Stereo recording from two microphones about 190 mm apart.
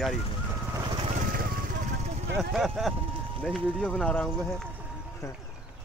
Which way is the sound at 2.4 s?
Centre (ahead or behind).